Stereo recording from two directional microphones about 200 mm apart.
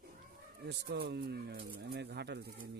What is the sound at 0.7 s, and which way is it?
Speech, 55° right (ahead or behind).